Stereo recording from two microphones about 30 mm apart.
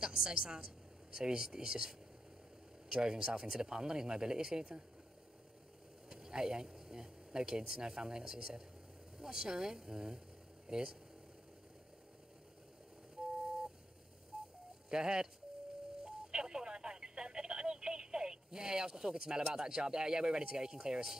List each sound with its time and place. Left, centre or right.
0.0 s speech: right
6.0 s speech: right
14.9 s speech: right
16.0 s telephone dialing: right